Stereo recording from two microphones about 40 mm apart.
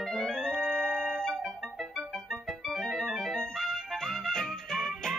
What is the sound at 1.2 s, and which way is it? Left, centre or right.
Organ, centre.